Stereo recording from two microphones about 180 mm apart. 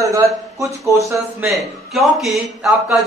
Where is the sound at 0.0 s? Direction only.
15° right (ahead or behind).